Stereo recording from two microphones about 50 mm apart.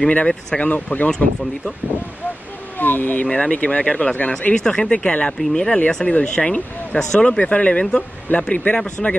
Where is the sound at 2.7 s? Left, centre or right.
Left.